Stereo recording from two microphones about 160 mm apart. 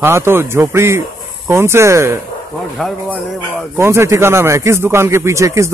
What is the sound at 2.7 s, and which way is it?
Speech, centre (ahead or behind).